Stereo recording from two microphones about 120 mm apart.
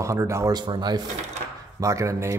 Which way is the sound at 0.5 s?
35° right (ahead or behind).